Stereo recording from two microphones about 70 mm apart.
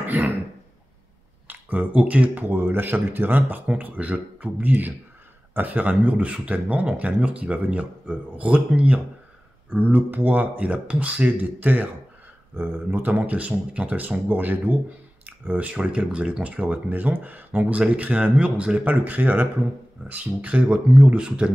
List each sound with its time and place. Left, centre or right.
0.0 s cough: right
1.5 s speech: right
12.5 s speech: right; by 21.5 s centre